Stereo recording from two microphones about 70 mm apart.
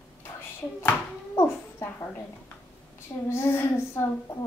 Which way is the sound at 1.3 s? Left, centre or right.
Left.